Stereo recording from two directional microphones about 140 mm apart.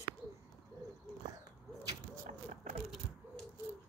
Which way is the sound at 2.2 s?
65° right (ahead or behind).